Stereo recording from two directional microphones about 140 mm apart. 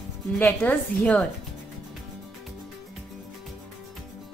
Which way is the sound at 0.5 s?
15° left (ahead or behind).